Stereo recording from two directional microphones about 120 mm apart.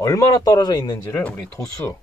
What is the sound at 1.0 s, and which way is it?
Speech, 20° left (ahead or behind).